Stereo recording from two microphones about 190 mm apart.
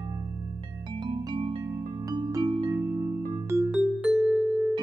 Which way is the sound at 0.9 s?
25° right (ahead or behind).